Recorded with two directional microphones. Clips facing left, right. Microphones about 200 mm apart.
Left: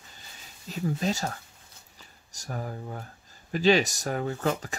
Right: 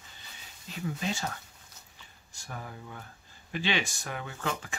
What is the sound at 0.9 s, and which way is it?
Speech, 40° left (ahead or behind).